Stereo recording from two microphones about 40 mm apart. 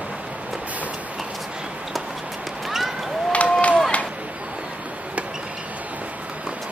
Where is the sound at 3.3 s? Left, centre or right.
Left.